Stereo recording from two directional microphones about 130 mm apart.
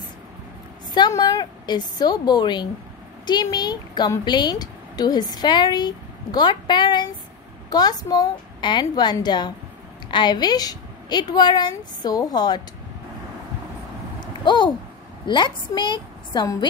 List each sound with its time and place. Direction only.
0.9 s a woman's voice: 30° left (ahead or behind)
14.4 s a sound: 35° left (ahead or behind)
15.2 s a woman's voice: 35° left (ahead or behind)